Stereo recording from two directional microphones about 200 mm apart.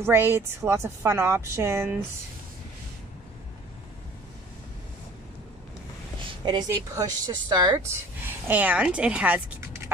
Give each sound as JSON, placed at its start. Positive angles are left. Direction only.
{"t": 0.0, "sound": "a woman's voice", "side_deg": -10}
{"t": 6.7, "sound": "a woman's voice", "side_deg": -15}